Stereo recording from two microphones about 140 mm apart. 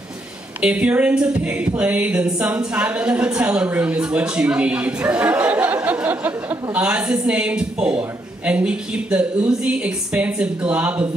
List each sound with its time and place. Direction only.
0.6 s speech: 10° right (ahead or behind)